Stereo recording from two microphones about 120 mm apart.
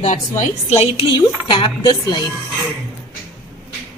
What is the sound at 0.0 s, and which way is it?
Speech, 85° left.